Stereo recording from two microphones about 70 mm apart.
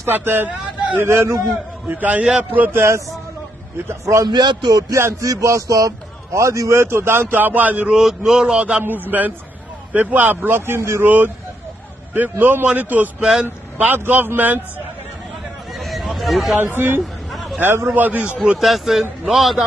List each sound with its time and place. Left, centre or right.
0.0 s a man's voice: right
1.9 s a man's voice: right
4.0 s a man's voice: right
4.3 s a man's voice: right
4.9 s a man's voice: right
7.9 s speech: centre
9.0 s a man's voice: right
11.1 s a man's voice: right
15.7 s a sound: centre
16.5 s a man's voice: right
17.0 s chatter: centre
17.8 s a man's voice: right
18.6 s a man's voice: centre